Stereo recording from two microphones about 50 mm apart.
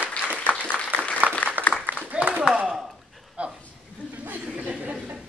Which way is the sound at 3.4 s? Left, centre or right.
Right.